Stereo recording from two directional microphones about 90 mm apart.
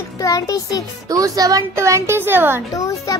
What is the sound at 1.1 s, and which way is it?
A woman's voice, 45° right (ahead or behind).